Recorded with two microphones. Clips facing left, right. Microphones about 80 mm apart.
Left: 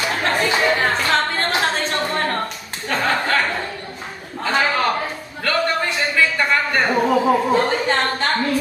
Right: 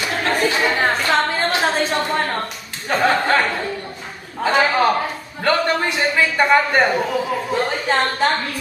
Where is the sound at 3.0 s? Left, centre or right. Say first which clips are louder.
Right 3 dB; right.